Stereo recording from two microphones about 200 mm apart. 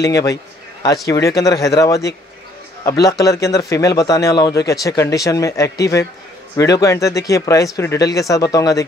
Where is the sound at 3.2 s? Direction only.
15° left (ahead or behind).